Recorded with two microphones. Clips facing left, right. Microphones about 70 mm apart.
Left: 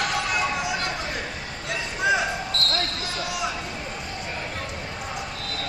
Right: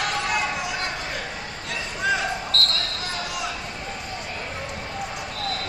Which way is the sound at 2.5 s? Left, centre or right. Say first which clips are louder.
Right 3 dB; right.